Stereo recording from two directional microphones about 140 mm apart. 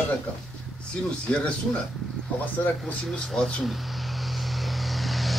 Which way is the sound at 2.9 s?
5° left (ahead or behind).